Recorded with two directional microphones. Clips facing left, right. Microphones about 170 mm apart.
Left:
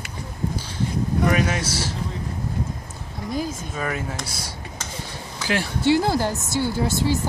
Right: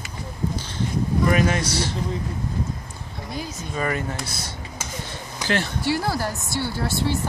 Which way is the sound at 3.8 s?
Centre (ahead or behind).